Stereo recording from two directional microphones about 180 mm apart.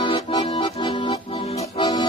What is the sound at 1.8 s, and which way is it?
Music, 25° left (ahead or behind).